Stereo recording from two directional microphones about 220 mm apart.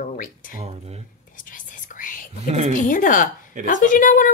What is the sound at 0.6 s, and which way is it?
Speech, 30° right (ahead or behind).